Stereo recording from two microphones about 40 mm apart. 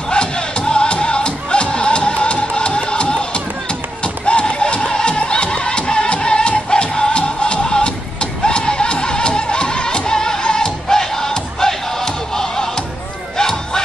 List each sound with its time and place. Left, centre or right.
0.1 s music: left
13.4 s battle cry: centre